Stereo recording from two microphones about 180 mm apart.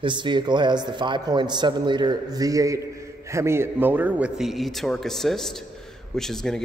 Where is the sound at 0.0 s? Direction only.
25° right (ahead or behind).